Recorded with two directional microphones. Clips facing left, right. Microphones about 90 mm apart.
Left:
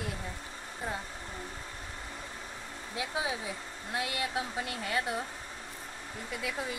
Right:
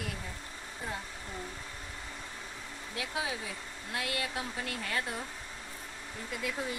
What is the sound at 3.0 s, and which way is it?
Speech, 20° left (ahead or behind).